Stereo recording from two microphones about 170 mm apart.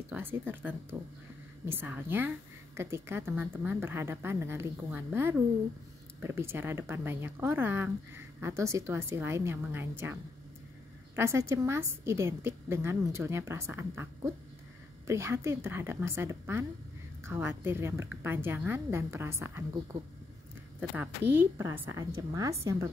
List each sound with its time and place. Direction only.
0.1 s speech: 10° right (ahead or behind)
11.1 s speech: 15° right (ahead or behind)
20.9 s speech: 10° right (ahead or behind)